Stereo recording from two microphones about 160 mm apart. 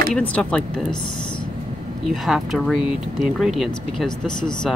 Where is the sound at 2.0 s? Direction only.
Centre (ahead or behind).